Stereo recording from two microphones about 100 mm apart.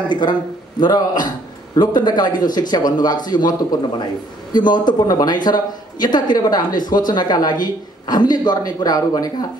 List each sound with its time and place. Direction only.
0.1 s speech: 50° left (ahead or behind)